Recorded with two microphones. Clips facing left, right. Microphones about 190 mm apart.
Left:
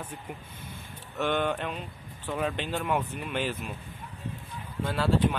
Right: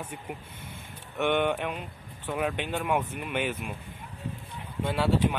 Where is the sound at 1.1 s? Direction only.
20° right (ahead or behind).